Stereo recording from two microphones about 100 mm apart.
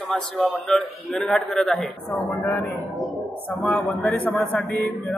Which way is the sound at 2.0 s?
20° left (ahead or behind).